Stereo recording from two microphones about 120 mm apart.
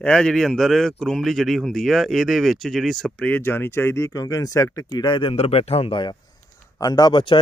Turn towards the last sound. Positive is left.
turn(degrees=40)  # may be behind; listen again after turning